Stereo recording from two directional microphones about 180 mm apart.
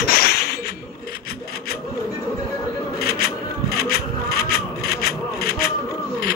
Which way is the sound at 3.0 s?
60° left (ahead or behind).